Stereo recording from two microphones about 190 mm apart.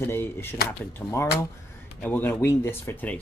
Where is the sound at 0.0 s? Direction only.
10° left (ahead or behind).